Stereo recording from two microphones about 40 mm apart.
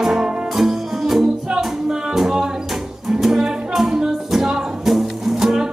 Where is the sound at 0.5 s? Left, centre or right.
Centre.